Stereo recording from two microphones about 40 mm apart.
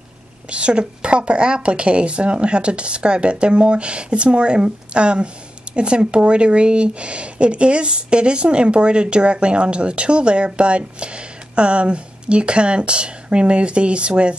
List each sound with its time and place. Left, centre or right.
0.5 s speech: right